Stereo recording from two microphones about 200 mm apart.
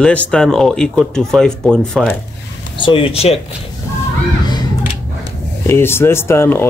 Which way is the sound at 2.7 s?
25° left (ahead or behind).